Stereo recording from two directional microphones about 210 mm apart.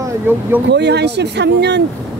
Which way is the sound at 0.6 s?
55° right (ahead or behind).